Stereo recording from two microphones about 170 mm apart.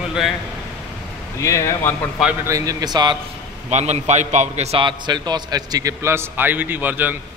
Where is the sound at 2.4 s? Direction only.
20° right (ahead or behind).